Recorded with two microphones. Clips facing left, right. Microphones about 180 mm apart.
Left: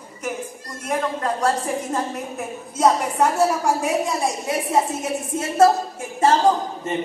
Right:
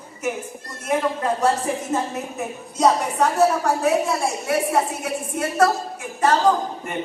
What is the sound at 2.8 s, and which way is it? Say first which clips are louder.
A woman's voice: even; 10° left (ahead or behind).